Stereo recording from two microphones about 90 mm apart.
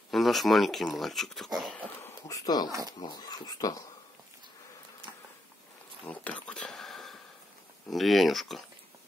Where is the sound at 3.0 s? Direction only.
50° left (ahead or behind).